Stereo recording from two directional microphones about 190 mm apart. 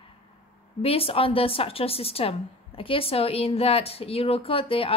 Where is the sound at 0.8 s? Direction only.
30° left (ahead or behind).